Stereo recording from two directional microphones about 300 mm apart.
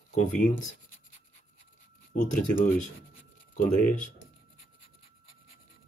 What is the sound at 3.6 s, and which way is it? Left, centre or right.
Speech, left.